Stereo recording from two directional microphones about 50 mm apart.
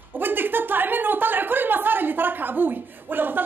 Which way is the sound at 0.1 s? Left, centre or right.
Right.